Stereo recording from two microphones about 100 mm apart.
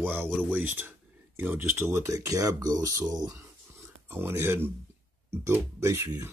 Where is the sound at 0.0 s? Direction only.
20° right (ahead or behind); by 3.4 s 35° right (ahead or behind).